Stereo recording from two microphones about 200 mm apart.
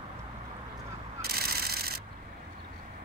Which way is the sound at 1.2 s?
50° right (ahead or behind).